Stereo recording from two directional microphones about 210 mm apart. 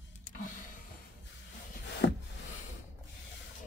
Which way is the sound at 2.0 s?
55° left (ahead or behind).